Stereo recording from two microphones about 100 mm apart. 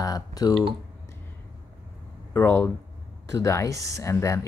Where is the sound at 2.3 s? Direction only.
20° left (ahead or behind).